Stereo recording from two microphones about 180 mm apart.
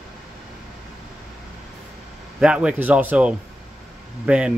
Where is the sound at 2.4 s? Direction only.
5° right (ahead or behind).